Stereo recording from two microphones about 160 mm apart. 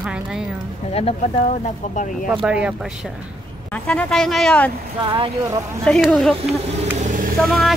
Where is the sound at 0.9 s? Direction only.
40° left (ahead or behind).